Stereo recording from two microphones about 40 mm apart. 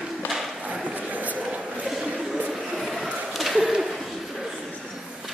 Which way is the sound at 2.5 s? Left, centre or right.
Centre.